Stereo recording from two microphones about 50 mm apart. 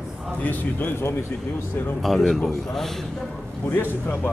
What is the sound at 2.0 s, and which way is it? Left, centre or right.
Speech, centre.